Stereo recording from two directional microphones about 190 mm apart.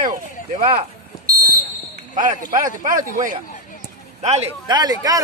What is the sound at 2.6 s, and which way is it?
Speech, 45° right (ahead or behind).